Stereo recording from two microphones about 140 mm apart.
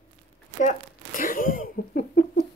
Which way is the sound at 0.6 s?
70° left (ahead or behind).